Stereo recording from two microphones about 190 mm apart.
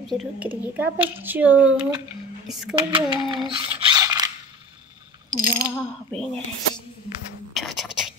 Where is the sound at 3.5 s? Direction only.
20° right (ahead or behind).